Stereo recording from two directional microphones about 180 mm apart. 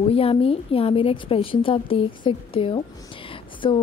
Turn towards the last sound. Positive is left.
turn(degrees=30)  # may be behind; listen again after turning